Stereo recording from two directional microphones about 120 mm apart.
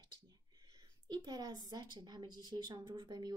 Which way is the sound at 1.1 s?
35° right (ahead or behind).